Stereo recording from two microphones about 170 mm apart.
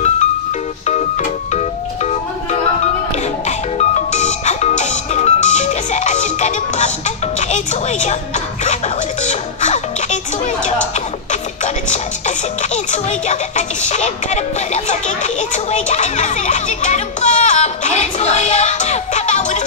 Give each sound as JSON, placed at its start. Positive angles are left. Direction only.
{"t": 3.4, "sound": "music", "side_deg": 40}
{"t": 9.2, "sound": "music", "side_deg": 45}
{"t": 12.7, "sound": "music", "side_deg": 45}